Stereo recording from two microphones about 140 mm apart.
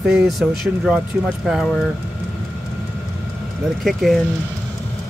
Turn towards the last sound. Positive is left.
turn(degrees=0)  # may be behind; listen again after turning